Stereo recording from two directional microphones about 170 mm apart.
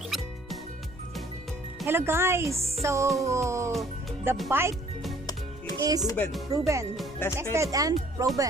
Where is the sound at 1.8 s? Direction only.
15° right (ahead or behind).